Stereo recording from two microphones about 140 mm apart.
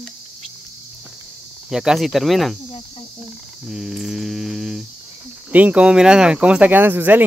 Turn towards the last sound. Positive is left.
turn(degrees=-15)  # may be behind; listen again after turning